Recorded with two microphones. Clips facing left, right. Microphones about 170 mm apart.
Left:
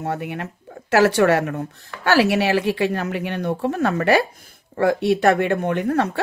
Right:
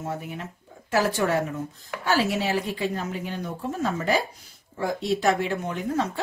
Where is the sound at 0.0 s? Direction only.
70° left (ahead or behind).